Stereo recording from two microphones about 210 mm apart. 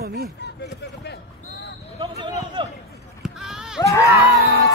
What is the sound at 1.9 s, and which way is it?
Speech, 25° right (ahead or behind).